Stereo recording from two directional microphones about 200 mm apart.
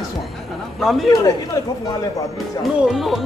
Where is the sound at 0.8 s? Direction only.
Centre (ahead or behind).